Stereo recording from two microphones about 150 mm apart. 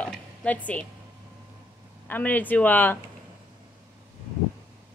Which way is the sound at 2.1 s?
10° left (ahead or behind).